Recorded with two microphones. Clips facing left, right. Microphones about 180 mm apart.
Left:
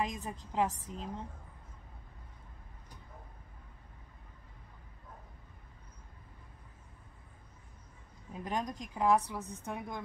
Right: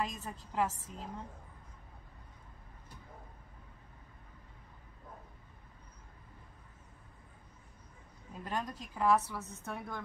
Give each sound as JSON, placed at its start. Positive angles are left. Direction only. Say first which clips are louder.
{"t": 0.0, "sound": "a woman's voice", "louder": "left 2 dB", "side_deg": 20}
{"t": 8.3, "sound": "a woman's voice", "louder": "left 2 dB", "side_deg": 15}